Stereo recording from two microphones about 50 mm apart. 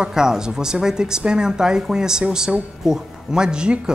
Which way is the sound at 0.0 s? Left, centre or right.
Centre.